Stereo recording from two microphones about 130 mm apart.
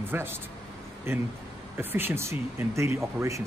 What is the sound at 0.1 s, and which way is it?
Speech, 15° right (ahead or behind).